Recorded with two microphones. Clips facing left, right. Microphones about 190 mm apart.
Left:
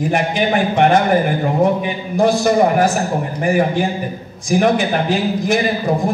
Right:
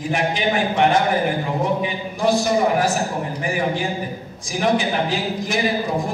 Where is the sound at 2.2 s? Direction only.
55° left (ahead or behind).